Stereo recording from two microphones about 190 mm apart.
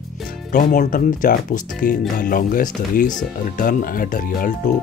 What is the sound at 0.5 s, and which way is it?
Speech, 45° left (ahead or behind).